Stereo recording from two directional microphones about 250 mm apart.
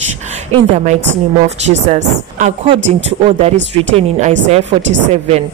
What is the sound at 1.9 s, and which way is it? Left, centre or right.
A woman's voice, right.